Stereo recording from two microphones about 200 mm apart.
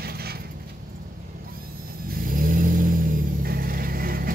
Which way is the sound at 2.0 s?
45° right (ahead or behind).